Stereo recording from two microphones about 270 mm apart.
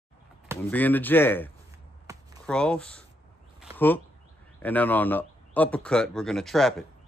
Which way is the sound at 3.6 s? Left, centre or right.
Centre.